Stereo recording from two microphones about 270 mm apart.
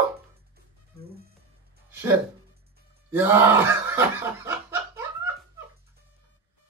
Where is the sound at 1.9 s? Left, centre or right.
Centre.